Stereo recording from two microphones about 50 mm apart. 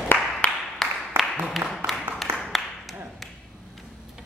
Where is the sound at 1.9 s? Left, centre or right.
Centre.